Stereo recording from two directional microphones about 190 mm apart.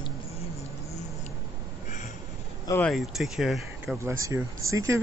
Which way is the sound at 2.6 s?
10° left (ahead or behind).